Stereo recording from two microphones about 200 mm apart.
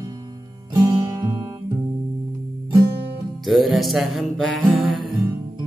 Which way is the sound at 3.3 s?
Centre (ahead or behind).